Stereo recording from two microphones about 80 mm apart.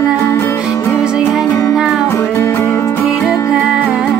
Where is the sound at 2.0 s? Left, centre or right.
Left.